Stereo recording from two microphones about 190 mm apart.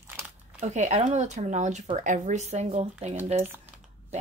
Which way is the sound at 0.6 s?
35° right (ahead or behind).